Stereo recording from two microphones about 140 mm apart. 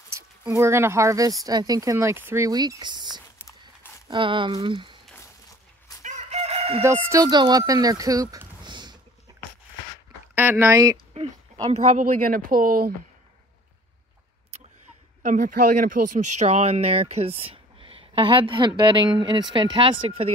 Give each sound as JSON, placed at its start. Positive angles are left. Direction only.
{"t": 0.4, "sound": "speech", "side_deg": -20}
{"t": 3.4, "sound": "walk", "side_deg": 20}
{"t": 4.1, "sound": "speech", "side_deg": -35}
{"t": 5.1, "sound": "a sound", "side_deg": 25}
{"t": 6.0, "sound": "chicken", "side_deg": -55}
{"t": 6.8, "sound": "speech", "side_deg": -20}
{"t": 9.3, "sound": "a sound", "side_deg": -30}
{"t": 10.3, "sound": "speech", "side_deg": -15}
{"t": 11.7, "sound": "speech", "side_deg": -50}
{"t": 12.2, "sound": "speech", "side_deg": -80}
{"t": 15.2, "sound": "speech", "side_deg": -70}
{"t": 16.3, "sound": "speech", "side_deg": -50}